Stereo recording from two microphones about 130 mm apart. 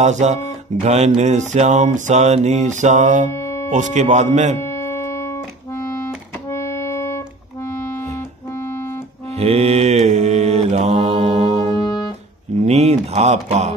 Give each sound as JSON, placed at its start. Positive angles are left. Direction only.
{"t": 0.0, "sound": "speech", "side_deg": -60}
{"t": 0.8, "sound": "music", "side_deg": -60}
{"t": 3.3, "sound": "music", "side_deg": 20}
{"t": 3.7, "sound": "speech", "side_deg": -65}
{"t": 4.6, "sound": "music", "side_deg": 20}
{"t": 9.4, "sound": "mantra", "side_deg": -50}
{"t": 11.8, "sound": "music", "side_deg": 30}
{"t": 12.5, "sound": "speech", "side_deg": -55}